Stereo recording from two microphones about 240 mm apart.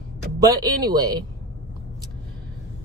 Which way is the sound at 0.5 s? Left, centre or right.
Right.